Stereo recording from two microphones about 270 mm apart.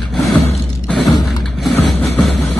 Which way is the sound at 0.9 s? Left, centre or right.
Centre.